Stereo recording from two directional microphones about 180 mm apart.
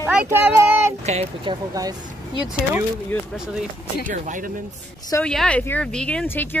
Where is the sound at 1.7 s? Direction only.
25° right (ahead or behind).